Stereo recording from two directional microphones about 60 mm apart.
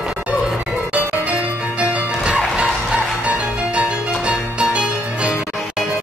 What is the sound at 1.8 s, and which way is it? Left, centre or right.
Music, right.